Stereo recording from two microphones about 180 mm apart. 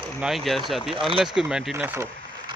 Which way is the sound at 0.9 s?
30° right (ahead or behind).